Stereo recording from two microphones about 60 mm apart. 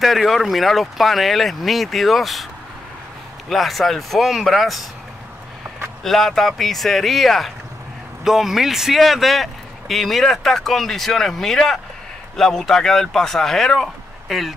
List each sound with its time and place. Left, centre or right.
0.0 s speech: centre
3.4 s speech: centre
6.0 s speech: centre